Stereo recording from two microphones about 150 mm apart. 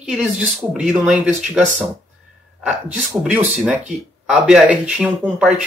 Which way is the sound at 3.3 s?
10° right (ahead or behind).